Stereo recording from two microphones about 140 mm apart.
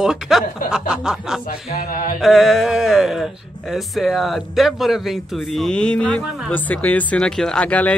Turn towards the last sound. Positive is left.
turn(degrees=10)  # may be behind; listen again after turning